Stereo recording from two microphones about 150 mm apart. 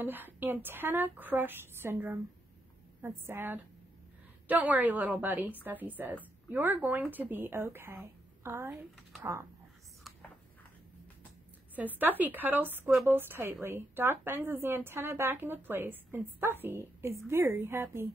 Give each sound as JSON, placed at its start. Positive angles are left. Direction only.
{"t": 0.0, "sound": "a woman's voice", "side_deg": -15}
{"t": 11.7, "sound": "a woman's voice", "side_deg": -10}